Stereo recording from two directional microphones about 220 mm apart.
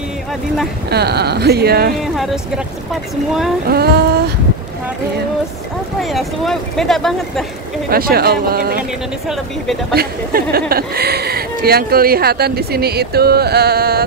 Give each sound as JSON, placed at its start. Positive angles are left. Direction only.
{"t": 0.8, "sound": "speech", "side_deg": -45}
{"t": 2.1, "sound": "speech", "side_deg": 0}
{"t": 3.6, "sound": "speech", "side_deg": -45}
{"t": 5.9, "sound": "speech", "side_deg": 0}
{"t": 7.9, "sound": "speech", "side_deg": -45}
{"t": 9.9, "sound": "speech", "side_deg": -45}